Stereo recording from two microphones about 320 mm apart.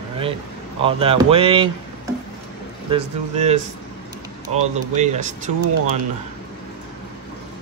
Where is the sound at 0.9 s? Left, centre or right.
Centre.